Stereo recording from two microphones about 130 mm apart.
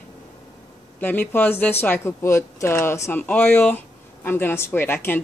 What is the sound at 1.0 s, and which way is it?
Speech, 15° left (ahead or behind).